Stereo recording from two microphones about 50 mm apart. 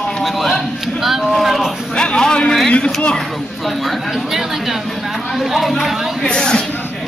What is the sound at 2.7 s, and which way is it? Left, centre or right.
Speech, left.